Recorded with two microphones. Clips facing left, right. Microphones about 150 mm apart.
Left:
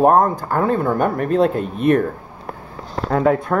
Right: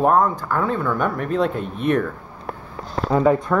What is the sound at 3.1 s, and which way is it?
Speech, centre (ahead or behind).